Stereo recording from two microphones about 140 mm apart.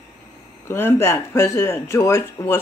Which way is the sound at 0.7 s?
15° left (ahead or behind).